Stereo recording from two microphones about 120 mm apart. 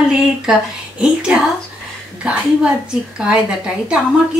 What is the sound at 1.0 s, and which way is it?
Speech, 5° right (ahead or behind).